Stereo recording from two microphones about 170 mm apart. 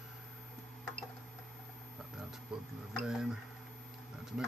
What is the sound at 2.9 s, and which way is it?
Speech, centre (ahead or behind).